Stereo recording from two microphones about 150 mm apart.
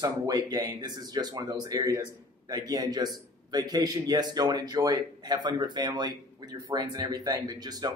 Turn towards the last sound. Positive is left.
turn(degrees=-25)  # may be behind; listen again after turning